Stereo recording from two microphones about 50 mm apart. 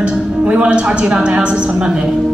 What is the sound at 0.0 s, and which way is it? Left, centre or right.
A woman's voice, right.